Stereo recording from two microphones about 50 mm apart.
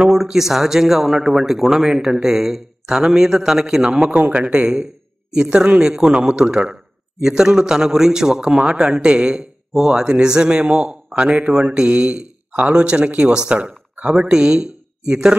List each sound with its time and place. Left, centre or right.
0.0 s speech: centre
4.1 s a man's voice: right
9.8 s speech: centre
10.0 s a man's voice: centre